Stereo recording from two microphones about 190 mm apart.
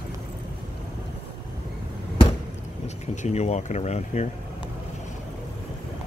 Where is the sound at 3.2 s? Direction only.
35° left (ahead or behind).